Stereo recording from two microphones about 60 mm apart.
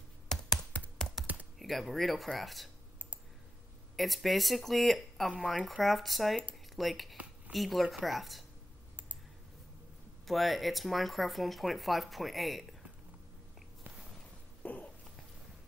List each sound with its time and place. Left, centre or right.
0.3 s computer keyboard: centre
1.6 s speech: centre
3.9 s speech: centre
10.2 s speech: centre
14.6 s a sound: left